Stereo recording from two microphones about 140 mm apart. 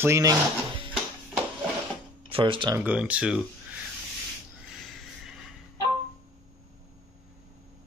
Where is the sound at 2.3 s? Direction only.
40° right (ahead or behind).